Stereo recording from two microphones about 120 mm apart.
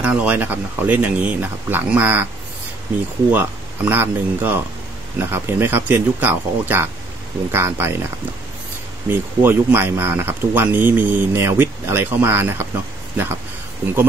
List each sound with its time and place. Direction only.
0.0 s speech: 10° right (ahead or behind)
3.3 s speech: 15° right (ahead or behind)
9.1 s speech: 20° right (ahead or behind)